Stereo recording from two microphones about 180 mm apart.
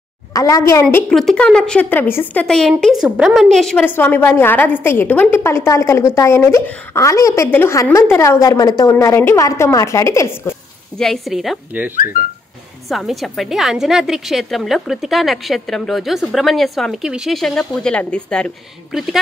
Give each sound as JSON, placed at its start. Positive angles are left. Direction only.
{"t": 0.3, "sound": "a woman's voice", "side_deg": 20}
{"t": 0.8, "sound": "a woman's voice", "side_deg": 5}
{"t": 11.0, "sound": "a woman's voice", "side_deg": 0}
{"t": 12.9, "sound": "a woman's voice", "side_deg": 0}